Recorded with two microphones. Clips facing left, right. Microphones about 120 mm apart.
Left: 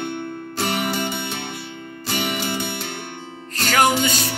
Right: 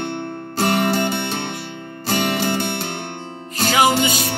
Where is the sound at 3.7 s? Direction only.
5° right (ahead or behind).